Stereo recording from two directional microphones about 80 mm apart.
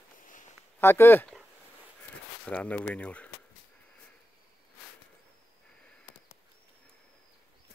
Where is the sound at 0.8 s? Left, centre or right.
Left.